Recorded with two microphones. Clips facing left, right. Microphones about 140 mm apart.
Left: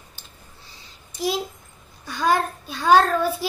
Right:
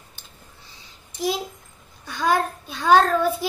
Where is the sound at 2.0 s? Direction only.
5° left (ahead or behind).